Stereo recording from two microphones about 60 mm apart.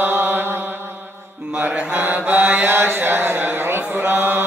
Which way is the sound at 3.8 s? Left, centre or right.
Right.